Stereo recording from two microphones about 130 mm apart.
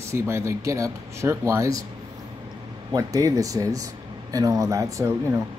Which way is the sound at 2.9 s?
25° right (ahead or behind).